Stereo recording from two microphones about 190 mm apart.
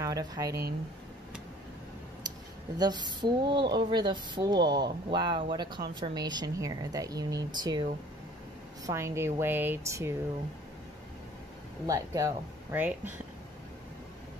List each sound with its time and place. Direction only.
0.0 s speech: 20° right (ahead or behind)
2.8 s speech: 25° right (ahead or behind)
11.8 s speech: 20° right (ahead or behind)